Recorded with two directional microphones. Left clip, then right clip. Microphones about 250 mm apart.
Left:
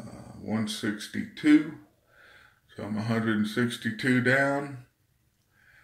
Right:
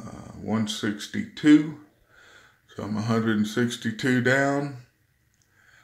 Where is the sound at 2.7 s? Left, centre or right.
Right.